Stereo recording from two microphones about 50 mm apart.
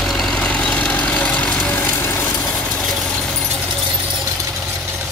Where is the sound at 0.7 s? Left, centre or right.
Left.